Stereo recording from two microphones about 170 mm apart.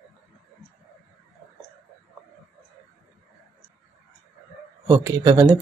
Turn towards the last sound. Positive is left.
turn(degrees=-20)  # may be behind; listen again after turning